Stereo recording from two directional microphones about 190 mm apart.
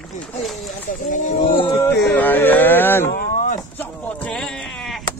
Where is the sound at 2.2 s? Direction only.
10° left (ahead or behind).